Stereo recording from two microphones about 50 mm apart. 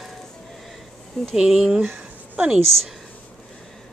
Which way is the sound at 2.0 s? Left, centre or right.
Right.